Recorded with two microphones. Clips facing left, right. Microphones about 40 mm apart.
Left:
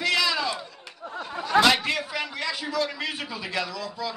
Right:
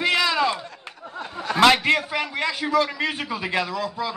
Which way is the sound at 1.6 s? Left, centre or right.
Right.